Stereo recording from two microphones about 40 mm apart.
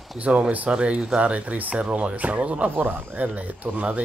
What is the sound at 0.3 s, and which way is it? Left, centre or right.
Speech, right.